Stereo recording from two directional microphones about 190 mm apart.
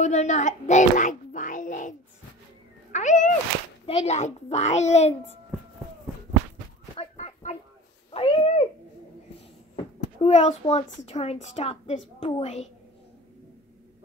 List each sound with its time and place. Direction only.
0.0 s speech: 40° left (ahead or behind)
2.9 s a sound: 40° left (ahead or behind)
3.8 s a child's voice: 30° left (ahead or behind)
7.0 s a sound: 35° left (ahead or behind)
8.1 s cat: 30° left (ahead or behind)
10.1 s a child's voice: 30° left (ahead or behind)